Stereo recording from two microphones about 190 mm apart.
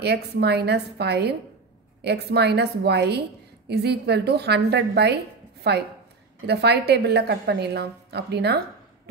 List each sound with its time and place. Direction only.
0.0 s a woman's voice: 60° right (ahead or behind)